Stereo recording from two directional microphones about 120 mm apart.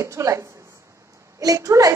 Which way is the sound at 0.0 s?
25° right (ahead or behind).